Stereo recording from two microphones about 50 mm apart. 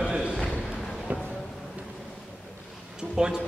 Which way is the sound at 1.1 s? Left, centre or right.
Right.